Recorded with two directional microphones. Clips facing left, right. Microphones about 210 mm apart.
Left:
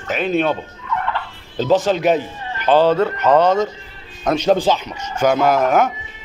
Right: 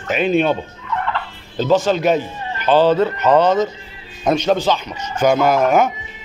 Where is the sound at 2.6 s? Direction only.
10° left (ahead or behind).